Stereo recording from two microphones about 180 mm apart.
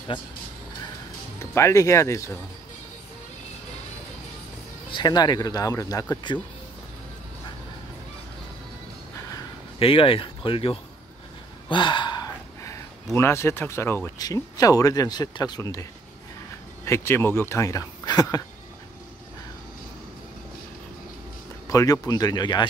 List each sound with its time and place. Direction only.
1.4 s speech: 15° left (ahead or behind)
4.9 s speech: 25° left (ahead or behind)
9.8 s speech: 30° left (ahead or behind)
11.7 s gasp: 25° left (ahead or behind)
13.1 s speech: 15° left (ahead or behind)
21.6 s speech: 20° left (ahead or behind)